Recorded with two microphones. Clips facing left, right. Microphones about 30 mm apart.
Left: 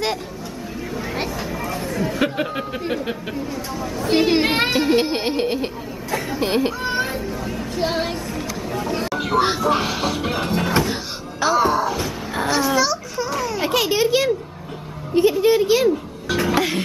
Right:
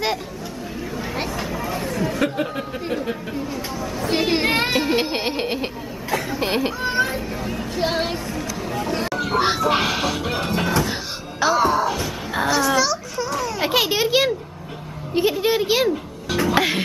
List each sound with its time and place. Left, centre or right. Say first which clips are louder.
0.9 s chatter: left 1 dB; centre
2.1 s speech: left 1 dB; centre
4.0 s speech: left 3 dB; centre
8.6 s a sound: even; centre
9.3 s speech: left 1 dB; centre
9.7 s speech: even; right
10.3 s speech: left 1 dB; centre
12.4 s babbling: even; centre
13.6 s a child's voice: left 1 dB; centre
16.3 s speech: even; centre
16.5 s speech: right 3 dB; centre